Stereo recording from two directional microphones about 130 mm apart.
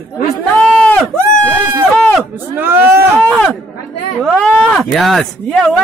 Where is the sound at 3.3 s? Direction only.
5° left (ahead or behind).